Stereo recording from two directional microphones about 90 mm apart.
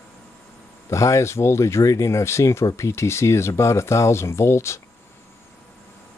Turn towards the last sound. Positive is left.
turn(degrees=30)  # may be behind; listen again after turning